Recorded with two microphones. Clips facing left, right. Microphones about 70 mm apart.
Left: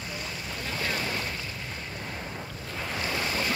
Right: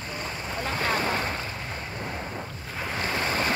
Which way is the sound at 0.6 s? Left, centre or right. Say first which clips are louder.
Right 5 dB; right.